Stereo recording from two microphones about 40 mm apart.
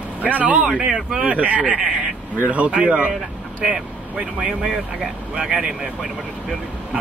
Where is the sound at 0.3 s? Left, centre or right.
Right.